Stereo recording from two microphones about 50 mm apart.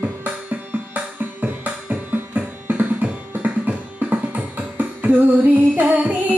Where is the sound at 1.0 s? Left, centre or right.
Right.